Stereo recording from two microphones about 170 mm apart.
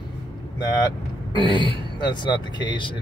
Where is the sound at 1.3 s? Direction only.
30° left (ahead or behind).